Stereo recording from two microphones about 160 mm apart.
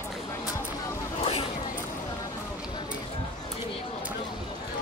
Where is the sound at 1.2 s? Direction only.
40° left (ahead or behind).